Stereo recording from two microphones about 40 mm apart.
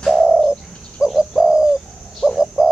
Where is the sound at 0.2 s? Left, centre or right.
Right.